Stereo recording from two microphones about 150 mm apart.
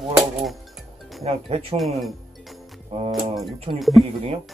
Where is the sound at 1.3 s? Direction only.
40° right (ahead or behind).